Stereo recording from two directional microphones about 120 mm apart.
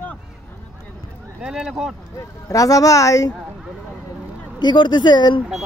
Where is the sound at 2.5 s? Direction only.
30° left (ahead or behind).